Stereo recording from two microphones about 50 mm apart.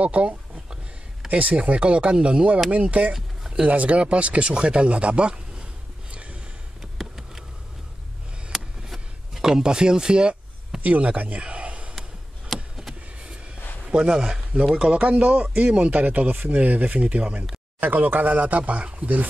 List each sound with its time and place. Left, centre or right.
0.0 s speech: right
6.8 s a sound: centre
8.5 s vehicle: centre
9.4 s speech: centre
10.8 s speech: right
11.9 s chop: centre
12.7 s a sound: centre
13.8 s speech: centre
14.9 s speech: right
17.7 s speech: right